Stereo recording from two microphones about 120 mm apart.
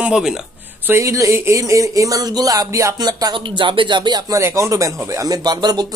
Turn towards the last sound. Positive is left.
turn(degrees=-35)  # may be behind; listen again after turning